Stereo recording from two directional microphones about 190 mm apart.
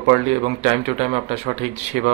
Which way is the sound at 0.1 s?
35° right (ahead or behind).